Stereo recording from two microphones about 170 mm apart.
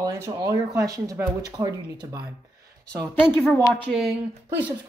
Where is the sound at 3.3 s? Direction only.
10° left (ahead or behind).